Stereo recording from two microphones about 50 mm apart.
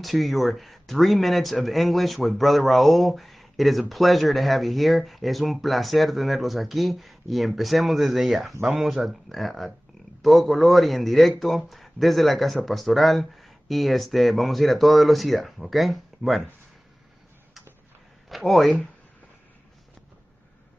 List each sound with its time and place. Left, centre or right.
0.0 s speech: centre
18.3 s speech: centre